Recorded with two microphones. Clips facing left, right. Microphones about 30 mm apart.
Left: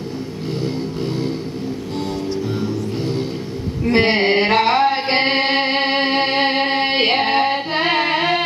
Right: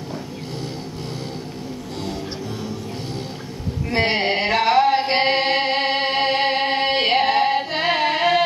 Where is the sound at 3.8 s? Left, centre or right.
Left.